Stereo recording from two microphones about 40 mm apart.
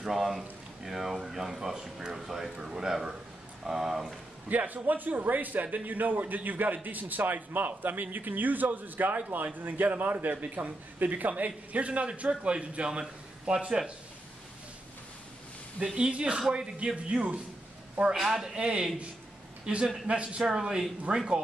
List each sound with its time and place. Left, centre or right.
0.0 s speech: centre
4.5 s a man's voice: right
15.8 s speech: right
18.1 s speech: centre
18.6 s a man's voice: right
21.1 s a man's voice: right